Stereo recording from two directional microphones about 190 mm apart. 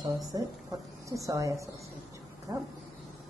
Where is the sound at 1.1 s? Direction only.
15° right (ahead or behind).